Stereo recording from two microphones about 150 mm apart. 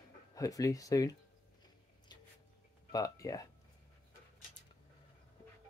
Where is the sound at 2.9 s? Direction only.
25° left (ahead or behind).